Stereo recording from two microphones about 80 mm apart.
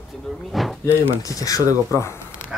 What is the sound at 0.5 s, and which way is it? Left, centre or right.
Speech, centre.